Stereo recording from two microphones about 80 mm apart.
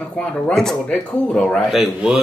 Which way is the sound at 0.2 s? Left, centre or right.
Centre.